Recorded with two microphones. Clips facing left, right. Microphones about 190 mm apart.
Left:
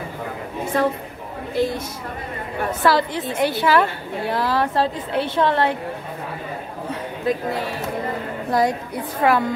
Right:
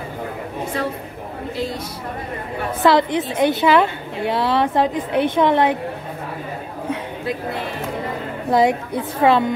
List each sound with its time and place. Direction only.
0.7 s a woman's voice: 50° left (ahead or behind)
2.8 s a woman's voice: 20° right (ahead or behind)
8.5 s a woman's voice: 25° right (ahead or behind)